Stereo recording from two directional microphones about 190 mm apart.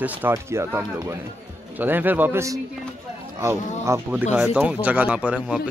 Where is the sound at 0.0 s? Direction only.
10° right (ahead or behind).